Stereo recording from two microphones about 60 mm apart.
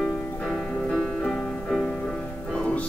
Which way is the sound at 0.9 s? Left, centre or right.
Centre.